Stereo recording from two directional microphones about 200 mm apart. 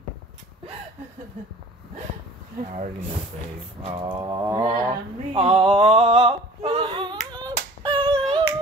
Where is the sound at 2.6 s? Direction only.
50° right (ahead or behind).